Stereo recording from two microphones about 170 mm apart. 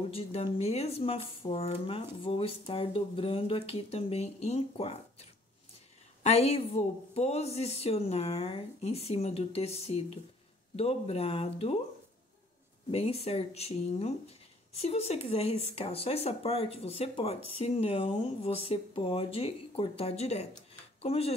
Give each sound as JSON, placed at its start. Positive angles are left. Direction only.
{"t": 0.1, "sound": "speech", "side_deg": 35}
{"t": 6.2, "sound": "speech", "side_deg": 40}
{"t": 12.9, "sound": "speech", "side_deg": 35}